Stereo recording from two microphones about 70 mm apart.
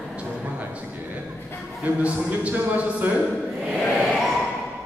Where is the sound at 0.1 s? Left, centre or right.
Centre.